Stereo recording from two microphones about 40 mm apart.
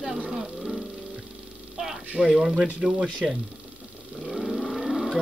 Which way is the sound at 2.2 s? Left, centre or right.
Centre.